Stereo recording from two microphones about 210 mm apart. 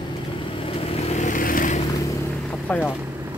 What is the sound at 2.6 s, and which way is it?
Vehicle, 5° left (ahead or behind).